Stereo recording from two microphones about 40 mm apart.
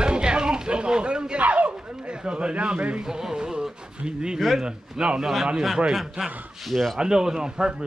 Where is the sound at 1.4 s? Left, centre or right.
Right.